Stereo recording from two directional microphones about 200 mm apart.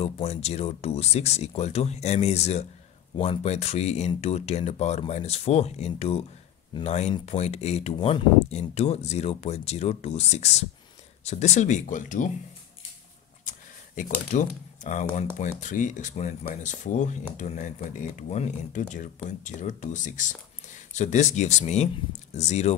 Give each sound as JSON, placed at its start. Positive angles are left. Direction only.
{"t": 0.0, "sound": "speech", "side_deg": 30}
{"t": 13.5, "sound": "a sound", "side_deg": 40}
{"t": 15.3, "sound": "speech", "side_deg": 35}